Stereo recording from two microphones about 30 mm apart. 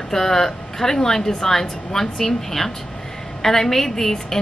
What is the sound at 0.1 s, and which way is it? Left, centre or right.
A woman's voice, centre.